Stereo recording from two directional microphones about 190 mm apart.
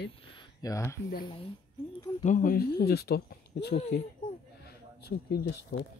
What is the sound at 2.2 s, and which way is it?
Speech, 45° left (ahead or behind).